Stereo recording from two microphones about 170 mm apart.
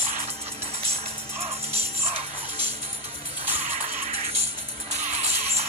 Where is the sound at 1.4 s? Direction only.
35° right (ahead or behind).